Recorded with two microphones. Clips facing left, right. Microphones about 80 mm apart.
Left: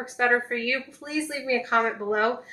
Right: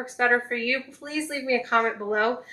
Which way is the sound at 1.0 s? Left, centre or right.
Left.